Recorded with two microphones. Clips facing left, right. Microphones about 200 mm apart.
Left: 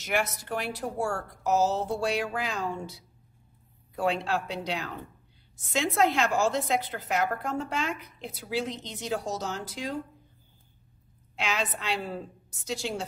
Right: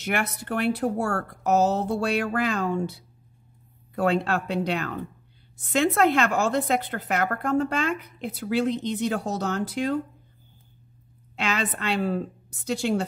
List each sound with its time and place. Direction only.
0.0 s a woman's voice: 60° right (ahead or behind)
11.3 s a woman's voice: 60° right (ahead or behind)